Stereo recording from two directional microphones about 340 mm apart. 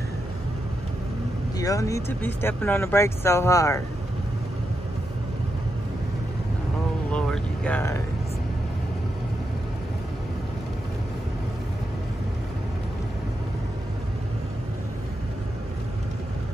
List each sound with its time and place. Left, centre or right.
1.6 s speech: centre
7.1 s vehicle: centre